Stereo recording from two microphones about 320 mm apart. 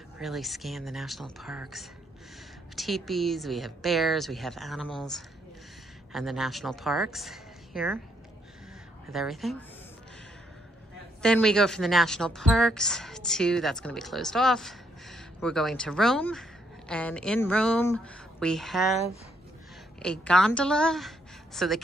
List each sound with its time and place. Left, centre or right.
0.2 s a woman's voice: centre
9.1 s a woman's voice: centre
11.2 s a woman's voice: centre
20.0 s a woman's voice: centre